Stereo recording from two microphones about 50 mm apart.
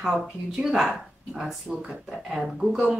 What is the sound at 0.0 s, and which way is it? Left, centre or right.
A woman's voice, centre.